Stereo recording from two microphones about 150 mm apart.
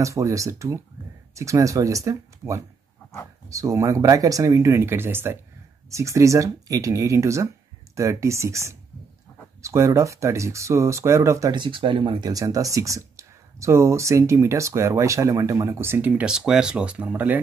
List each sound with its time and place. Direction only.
0.0 s speech: 20° right (ahead or behind)